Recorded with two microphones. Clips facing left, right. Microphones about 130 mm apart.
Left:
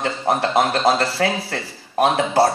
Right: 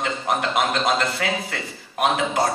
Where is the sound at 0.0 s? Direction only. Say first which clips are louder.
Left 3 dB; 35° left (ahead or behind).